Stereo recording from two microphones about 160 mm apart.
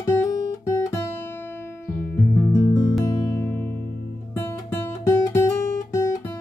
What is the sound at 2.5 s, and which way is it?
Music, 20° left (ahead or behind).